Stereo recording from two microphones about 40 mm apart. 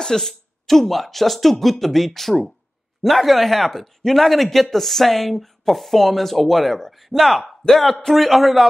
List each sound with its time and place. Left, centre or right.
0.0 s speech: centre